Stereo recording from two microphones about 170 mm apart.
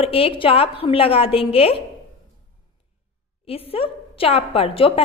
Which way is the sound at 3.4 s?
35° left (ahead or behind).